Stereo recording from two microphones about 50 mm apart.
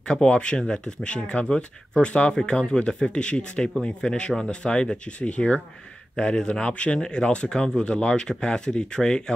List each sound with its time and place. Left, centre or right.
0.1 s speech: centre